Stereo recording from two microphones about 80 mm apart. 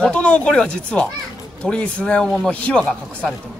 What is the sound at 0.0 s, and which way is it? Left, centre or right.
Speech, centre.